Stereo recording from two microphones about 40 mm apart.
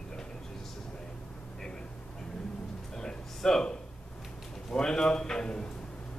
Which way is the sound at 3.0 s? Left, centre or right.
Centre.